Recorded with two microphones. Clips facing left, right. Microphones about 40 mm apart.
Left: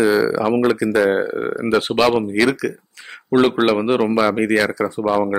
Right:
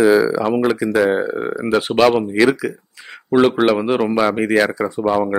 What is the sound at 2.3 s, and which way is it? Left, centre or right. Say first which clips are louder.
Speech: right 2 dB; centre.